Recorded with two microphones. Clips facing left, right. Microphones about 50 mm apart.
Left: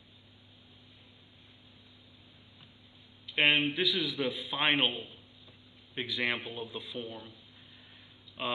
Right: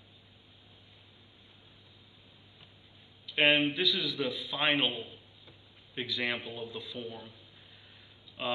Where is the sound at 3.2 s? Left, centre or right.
Centre.